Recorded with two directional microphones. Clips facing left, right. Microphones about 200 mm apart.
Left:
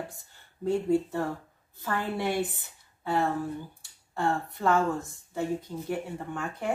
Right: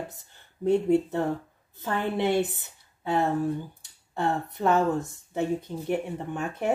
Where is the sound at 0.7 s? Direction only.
20° right (ahead or behind).